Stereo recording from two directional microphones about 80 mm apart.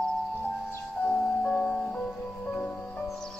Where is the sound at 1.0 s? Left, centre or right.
Centre.